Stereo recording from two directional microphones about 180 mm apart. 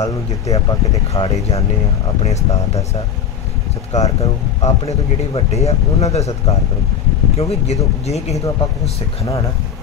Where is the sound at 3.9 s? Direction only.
40° left (ahead or behind).